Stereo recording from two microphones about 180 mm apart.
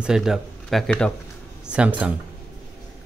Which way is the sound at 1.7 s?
5° right (ahead or behind).